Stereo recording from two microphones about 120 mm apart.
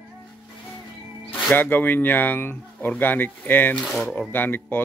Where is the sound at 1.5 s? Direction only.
15° left (ahead or behind).